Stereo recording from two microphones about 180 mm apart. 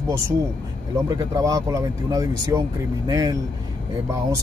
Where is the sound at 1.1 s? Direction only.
20° right (ahead or behind).